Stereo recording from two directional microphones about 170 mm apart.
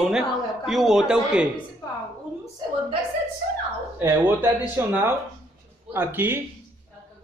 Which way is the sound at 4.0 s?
15° right (ahead or behind).